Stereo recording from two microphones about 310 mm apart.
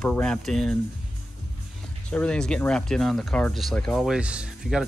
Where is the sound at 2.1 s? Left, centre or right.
Centre.